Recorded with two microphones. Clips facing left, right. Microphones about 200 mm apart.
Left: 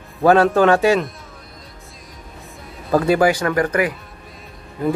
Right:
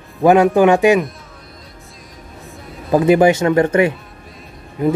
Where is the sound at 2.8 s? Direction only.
20° right (ahead or behind).